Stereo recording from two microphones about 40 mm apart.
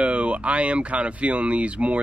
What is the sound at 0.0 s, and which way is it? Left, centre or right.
Speech, right.